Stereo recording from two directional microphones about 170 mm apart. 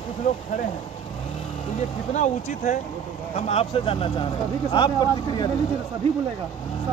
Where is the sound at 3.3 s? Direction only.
35° left (ahead or behind).